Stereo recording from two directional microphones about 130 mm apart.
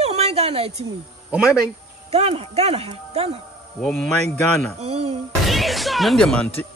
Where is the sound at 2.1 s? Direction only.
50° right (ahead or behind).